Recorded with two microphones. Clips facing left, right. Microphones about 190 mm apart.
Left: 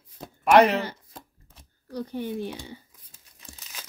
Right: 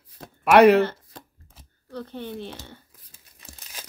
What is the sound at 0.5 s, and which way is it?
Speech, 60° right (ahead or behind).